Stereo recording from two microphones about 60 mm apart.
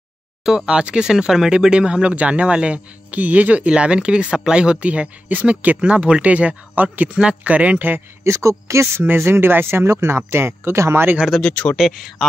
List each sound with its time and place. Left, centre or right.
0.4 s speech: centre
8.2 s speech: right
9.0 s speech: right
11.1 s speech: centre
11.4 s speech: centre
11.7 s speech: centre